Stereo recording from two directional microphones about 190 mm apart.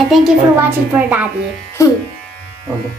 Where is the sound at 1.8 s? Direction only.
15° left (ahead or behind).